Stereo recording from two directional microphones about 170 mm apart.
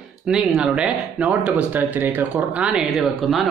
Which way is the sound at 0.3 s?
5° right (ahead or behind).